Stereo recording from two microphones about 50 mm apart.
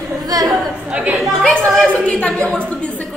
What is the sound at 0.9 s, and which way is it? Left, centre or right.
Speech, right.